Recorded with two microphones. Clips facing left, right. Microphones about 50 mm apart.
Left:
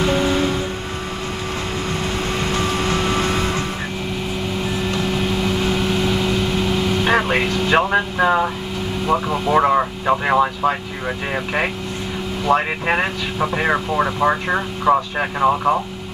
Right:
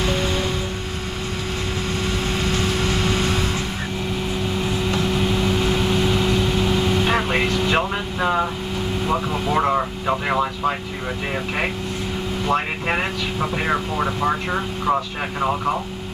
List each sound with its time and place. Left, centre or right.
2.5 s vehicle: left
5.1 s vehicle: centre
6.7 s vehicle: centre
9.0 s air conditioning: centre
9.6 s vehicle: centre
12.4 s speech: centre